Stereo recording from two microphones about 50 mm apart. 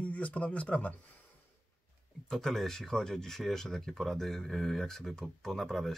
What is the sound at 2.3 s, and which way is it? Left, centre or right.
Speech, centre.